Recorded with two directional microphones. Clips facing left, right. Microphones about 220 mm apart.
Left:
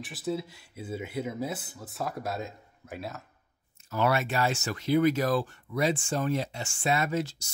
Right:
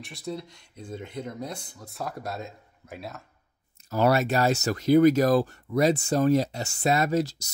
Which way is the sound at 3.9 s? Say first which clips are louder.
Right 5 dB; 40° right (ahead or behind).